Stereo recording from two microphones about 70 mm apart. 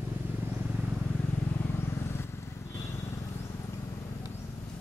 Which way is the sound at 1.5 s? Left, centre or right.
Left.